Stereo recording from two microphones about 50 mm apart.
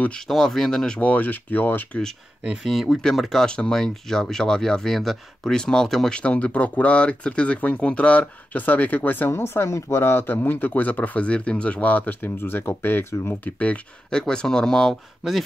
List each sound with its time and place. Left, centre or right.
0.3 s speech: centre
0.9 s speech: left
2.6 s speech: centre
3.4 s speech: centre
6.1 s speech: left
9.3 s speech: left
10.2 s speech: left
13.3 s speech: left
14.1 s speech: centre